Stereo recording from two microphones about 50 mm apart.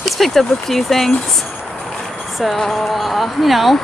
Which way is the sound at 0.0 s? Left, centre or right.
Centre.